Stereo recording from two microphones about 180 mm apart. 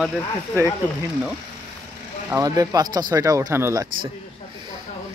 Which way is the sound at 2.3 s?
20° right (ahead or behind).